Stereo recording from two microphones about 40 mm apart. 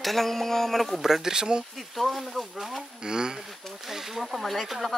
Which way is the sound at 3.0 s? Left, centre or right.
Centre.